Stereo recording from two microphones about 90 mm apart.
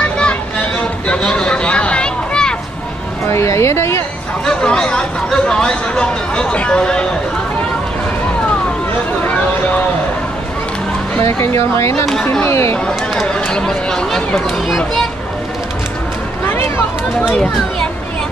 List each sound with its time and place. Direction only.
0.2 s a sound: 15° left (ahead or behind)
3.3 s a sound: 30° left (ahead or behind)
4.5 s speech: 10° left (ahead or behind)
11.7 s speech: 30° left (ahead or behind)
13.3 s speech: 10° left (ahead or behind)
16.4 s run: 25° left (ahead or behind)
17.3 s speech: centre (ahead or behind)